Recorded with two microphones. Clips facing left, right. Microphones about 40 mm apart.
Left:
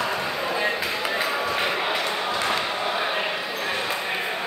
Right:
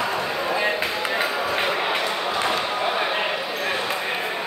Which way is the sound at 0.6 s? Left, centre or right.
Right.